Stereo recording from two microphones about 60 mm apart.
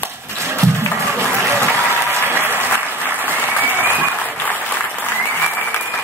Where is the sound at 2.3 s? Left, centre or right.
Left.